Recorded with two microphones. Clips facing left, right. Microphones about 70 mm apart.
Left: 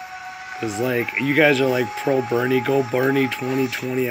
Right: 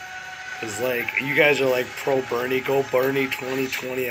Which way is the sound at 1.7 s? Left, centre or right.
Left.